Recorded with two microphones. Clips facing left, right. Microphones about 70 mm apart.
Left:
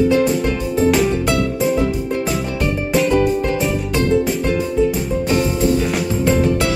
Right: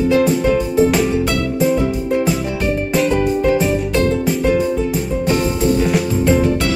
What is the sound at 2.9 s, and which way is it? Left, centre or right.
Music, centre.